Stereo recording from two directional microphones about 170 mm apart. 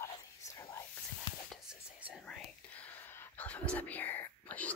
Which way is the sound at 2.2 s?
5° left (ahead or behind).